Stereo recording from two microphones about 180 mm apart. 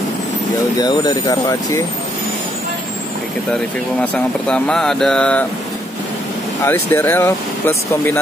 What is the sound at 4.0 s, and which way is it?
Speech, 5° left (ahead or behind).